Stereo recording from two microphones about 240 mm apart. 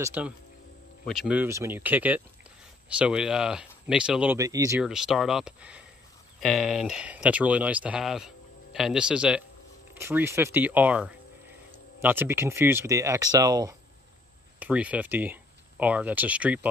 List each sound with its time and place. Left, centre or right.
0.0 s speech: centre
4.8 s speech: centre